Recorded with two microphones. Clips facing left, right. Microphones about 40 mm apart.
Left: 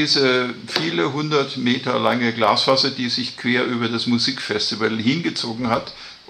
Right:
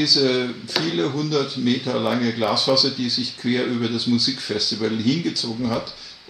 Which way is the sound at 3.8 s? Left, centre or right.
Left.